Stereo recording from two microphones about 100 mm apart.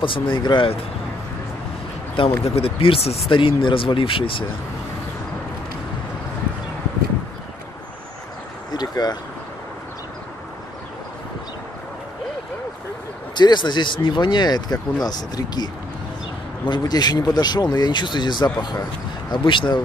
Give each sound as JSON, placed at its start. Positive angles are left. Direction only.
{"t": 0.0, "sound": "speech", "side_deg": 55}
{"t": 2.4, "sound": "speech", "side_deg": 80}
{"t": 3.3, "sound": "speech", "side_deg": 60}
{"t": 8.8, "sound": "speech", "side_deg": 40}
{"t": 13.3, "sound": "speech", "side_deg": 50}